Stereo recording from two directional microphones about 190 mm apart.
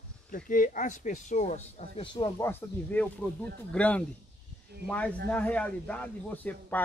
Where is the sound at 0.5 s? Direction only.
45° left (ahead or behind).